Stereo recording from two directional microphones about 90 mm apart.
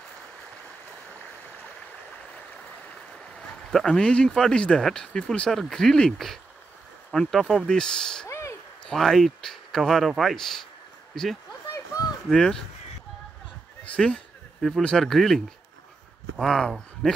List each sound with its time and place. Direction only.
3.7 s speech: 5° left (ahead or behind)
8.3 s a sound: 30° left (ahead or behind)
8.8 s speech: 5° left (ahead or behind)
13.9 s speech: 10° left (ahead or behind)